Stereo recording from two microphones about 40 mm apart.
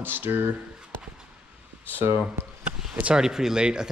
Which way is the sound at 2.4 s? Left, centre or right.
Right.